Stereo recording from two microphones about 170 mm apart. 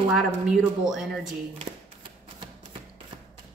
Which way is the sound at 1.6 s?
30° right (ahead or behind).